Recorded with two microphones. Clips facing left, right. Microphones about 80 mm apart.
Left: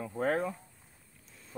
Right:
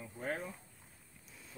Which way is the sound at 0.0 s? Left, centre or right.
Left.